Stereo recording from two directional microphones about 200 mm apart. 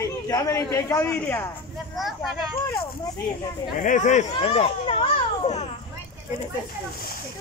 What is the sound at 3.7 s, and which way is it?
A child's voice, 40° left (ahead or behind).